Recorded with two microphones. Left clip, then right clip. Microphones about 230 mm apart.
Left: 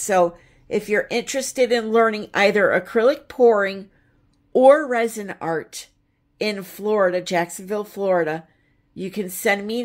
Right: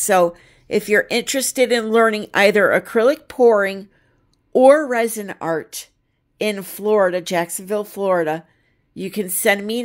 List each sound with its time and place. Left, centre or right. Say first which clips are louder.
0.0 s speech: right 3 dB; right